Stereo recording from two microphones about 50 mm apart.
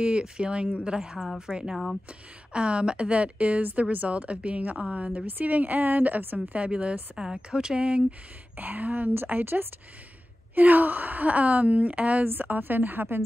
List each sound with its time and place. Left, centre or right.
0.0 s a woman's voice: right
8.5 s a woman's voice: right
12.3 s a woman's voice: right